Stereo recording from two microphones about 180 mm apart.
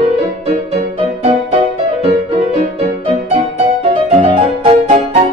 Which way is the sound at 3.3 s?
35° right (ahead or behind).